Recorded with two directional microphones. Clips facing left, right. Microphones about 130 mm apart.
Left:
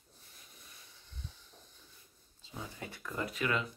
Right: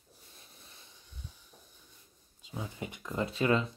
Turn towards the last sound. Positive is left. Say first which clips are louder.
# right 6 dB
turn(degrees=-30)  # may be behind; listen again after turning